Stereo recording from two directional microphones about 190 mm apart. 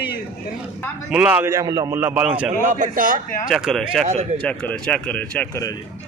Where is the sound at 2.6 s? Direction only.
45° right (ahead or behind).